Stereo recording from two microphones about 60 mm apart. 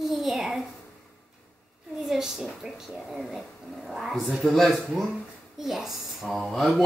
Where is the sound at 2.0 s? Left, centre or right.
Centre.